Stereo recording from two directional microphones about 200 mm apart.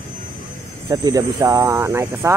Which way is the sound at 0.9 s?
20° right (ahead or behind).